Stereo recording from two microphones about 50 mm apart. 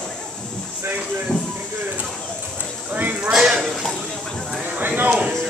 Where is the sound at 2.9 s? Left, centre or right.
Right.